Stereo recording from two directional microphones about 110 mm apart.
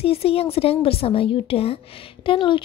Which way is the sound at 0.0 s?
60° left (ahead or behind).